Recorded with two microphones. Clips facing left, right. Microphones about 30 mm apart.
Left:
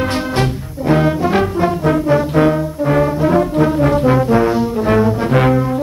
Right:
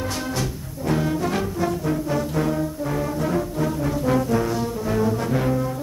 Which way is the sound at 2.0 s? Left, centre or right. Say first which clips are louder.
Left 13 dB; left.